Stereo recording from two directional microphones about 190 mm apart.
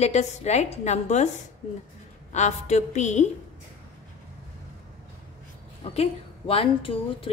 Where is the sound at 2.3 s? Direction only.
35° left (ahead or behind).